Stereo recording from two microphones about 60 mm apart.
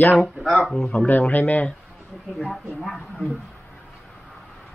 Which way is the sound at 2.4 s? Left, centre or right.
Centre.